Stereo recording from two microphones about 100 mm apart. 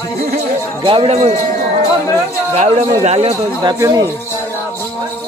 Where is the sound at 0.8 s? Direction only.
75° right (ahead or behind).